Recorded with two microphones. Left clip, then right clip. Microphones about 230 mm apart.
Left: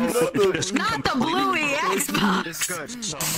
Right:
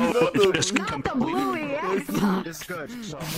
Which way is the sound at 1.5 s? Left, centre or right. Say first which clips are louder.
Left 4 dB; left.